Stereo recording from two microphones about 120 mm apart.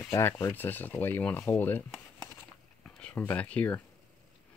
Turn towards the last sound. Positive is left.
turn(degrees=10)  # may be behind; listen again after turning